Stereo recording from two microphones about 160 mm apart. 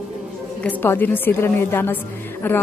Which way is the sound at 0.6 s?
10° left (ahead or behind).